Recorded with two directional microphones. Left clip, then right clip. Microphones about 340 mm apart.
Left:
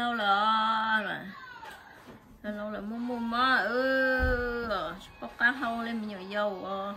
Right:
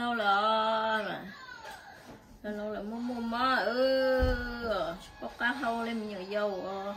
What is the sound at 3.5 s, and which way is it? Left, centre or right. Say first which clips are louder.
Speech: left 1 dB; centre.